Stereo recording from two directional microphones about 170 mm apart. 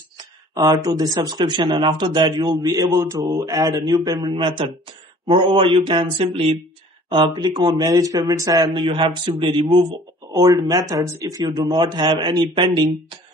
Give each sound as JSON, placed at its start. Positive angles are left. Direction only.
{"t": 0.2, "sound": "speech", "side_deg": -25}